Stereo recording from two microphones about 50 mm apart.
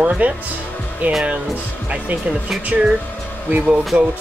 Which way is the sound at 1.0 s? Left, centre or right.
Right.